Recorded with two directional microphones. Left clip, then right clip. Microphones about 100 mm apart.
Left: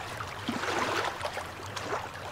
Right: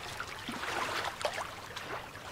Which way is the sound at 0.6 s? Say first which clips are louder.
Left 5 dB; 5° left (ahead or behind).